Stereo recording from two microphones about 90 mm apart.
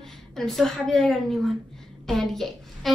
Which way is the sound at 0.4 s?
5° left (ahead or behind).